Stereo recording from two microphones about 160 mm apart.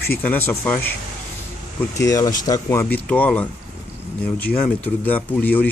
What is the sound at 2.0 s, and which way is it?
Speech, 20° left (ahead or behind).